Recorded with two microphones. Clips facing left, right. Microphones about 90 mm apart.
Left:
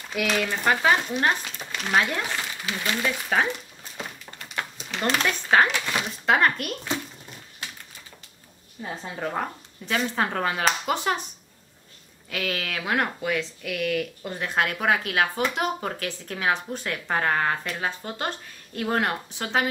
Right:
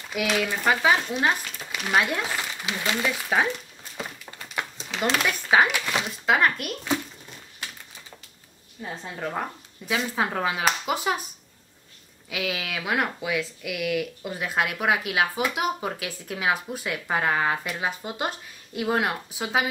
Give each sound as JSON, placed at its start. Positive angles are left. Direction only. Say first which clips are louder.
{"t": 0.1, "sound": "speech", "louder": "even", "side_deg": -5}
{"t": 2.6, "sound": "speech", "louder": "right 1 dB", "side_deg": -15}
{"t": 3.1, "sound": "speech", "louder": "even", "side_deg": -5}
{"t": 4.0, "sound": "a sound", "louder": "right 1 dB", "side_deg": -10}
{"t": 5.1, "sound": "speech", "louder": "even", "side_deg": -5}
{"t": 8.8, "sound": "speech", "louder": "left 1 dB", "side_deg": 5}
{"t": 12.3, "sound": "speech", "louder": "even", "side_deg": -5}